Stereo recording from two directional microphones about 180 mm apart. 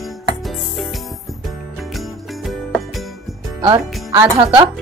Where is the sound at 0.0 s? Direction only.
Centre (ahead or behind).